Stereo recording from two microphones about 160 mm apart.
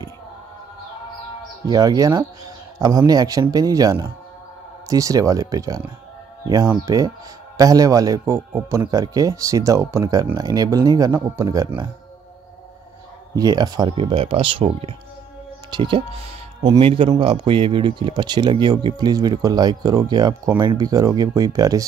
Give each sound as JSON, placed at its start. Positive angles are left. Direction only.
{"t": 1.7, "sound": "speech", "side_deg": -25}
{"t": 13.3, "sound": "speech", "side_deg": -25}